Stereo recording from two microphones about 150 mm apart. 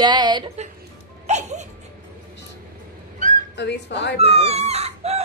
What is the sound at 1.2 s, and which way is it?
Music, 50° right (ahead or behind).